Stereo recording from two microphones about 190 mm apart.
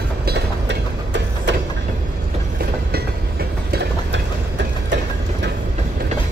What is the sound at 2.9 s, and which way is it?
Train, 55° right (ahead or behind).